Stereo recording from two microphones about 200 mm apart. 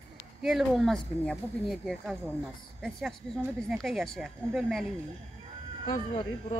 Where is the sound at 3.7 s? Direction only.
Centre (ahead or behind).